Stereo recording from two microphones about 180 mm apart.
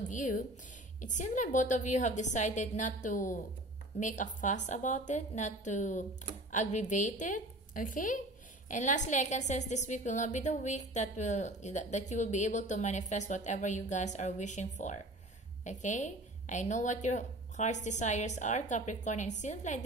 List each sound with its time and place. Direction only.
0.1 s a woman's voice: 45° left (ahead or behind)